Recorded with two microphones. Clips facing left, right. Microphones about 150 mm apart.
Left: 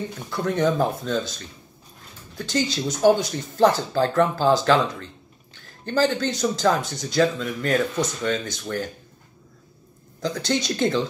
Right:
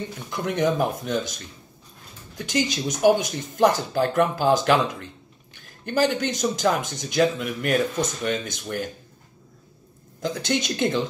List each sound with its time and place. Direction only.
0.3 s speech: 20° right (ahead or behind)
10.2 s speech: 20° right (ahead or behind)